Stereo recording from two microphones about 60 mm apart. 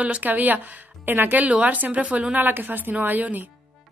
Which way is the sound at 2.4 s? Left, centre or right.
Right.